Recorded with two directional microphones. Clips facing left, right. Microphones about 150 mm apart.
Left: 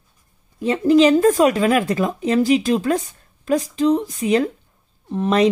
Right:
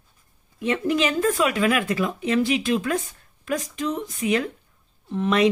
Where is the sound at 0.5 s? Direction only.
35° left (ahead or behind).